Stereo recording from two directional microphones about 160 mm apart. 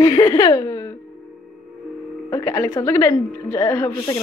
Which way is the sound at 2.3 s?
20° left (ahead or behind).